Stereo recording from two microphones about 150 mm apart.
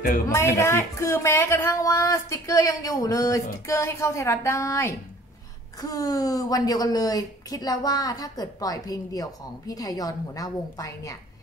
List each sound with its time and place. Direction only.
0.3 s a woman's voice: 20° left (ahead or behind)